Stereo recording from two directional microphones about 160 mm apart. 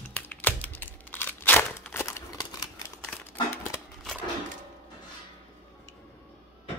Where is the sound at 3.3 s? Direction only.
15° left (ahead or behind).